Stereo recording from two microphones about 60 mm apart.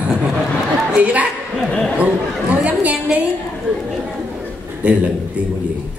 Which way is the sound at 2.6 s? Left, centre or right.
Right.